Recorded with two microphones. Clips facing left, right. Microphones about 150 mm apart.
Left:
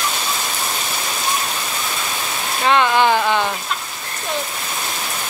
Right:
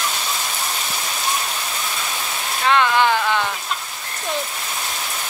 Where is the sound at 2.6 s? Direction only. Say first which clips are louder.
Left 2 dB; 20° left (ahead or behind).